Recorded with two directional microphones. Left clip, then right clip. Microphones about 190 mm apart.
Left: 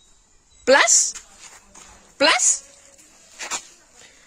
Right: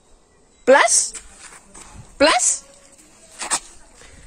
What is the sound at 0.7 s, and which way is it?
Speech, 20° left (ahead or behind).